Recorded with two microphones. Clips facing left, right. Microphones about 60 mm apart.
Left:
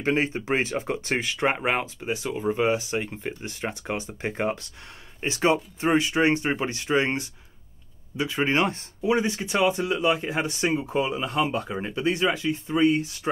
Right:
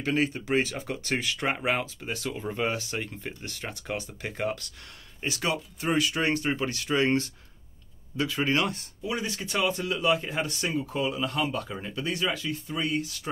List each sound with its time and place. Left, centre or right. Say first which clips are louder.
0.0 s speech: left 3 dB; left
2.0 s speech: left 5 dB; centre